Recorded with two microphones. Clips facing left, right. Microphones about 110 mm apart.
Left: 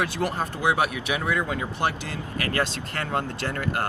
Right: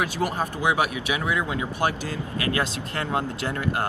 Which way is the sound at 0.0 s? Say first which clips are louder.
Right 1 dB; 15° right (ahead or behind).